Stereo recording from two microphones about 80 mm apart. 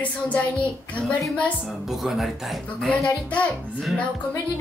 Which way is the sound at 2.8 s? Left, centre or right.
Centre.